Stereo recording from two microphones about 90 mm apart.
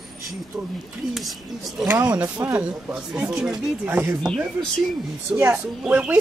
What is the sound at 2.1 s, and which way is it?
A woman's voice, 15° right (ahead or behind).